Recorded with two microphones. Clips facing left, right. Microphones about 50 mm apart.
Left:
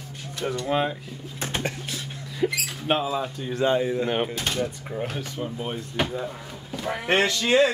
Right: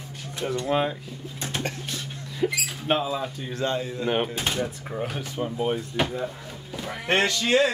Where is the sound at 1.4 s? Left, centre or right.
Left.